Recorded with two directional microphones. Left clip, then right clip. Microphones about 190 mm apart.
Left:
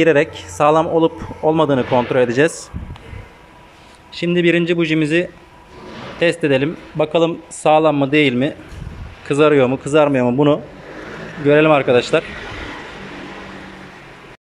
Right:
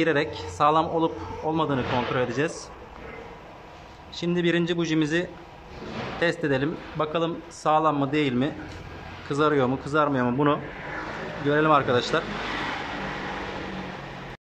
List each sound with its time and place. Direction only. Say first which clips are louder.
0.0 s a man's voice: left 10 dB; 15° left (ahead or behind)
4.2 s a man's voice: left 9 dB; 15° left (ahead or behind)